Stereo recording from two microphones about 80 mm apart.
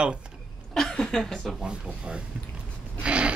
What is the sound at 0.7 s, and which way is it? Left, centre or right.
Speech, centre.